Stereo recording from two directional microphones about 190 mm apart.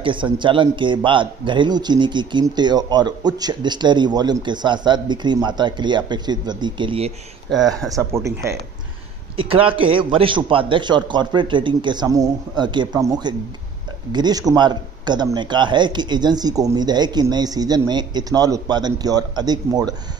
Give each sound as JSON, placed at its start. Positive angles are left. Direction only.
{"t": 0.0, "sound": "speech", "side_deg": -25}
{"t": 7.4, "sound": "speech", "side_deg": 0}
{"t": 7.9, "sound": "speech", "side_deg": -15}
{"t": 9.4, "sound": "speech", "side_deg": -30}